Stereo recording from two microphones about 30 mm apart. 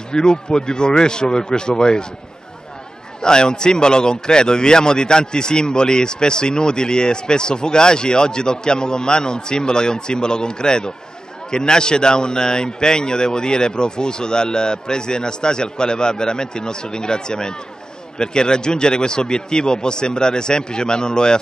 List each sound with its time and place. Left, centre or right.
0.1 s a man's voice: left
3.2 s a man's voice: left